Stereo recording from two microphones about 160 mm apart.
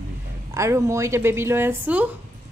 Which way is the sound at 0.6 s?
20° right (ahead or behind).